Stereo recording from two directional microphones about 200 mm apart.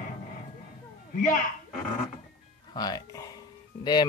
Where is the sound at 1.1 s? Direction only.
45° left (ahead or behind).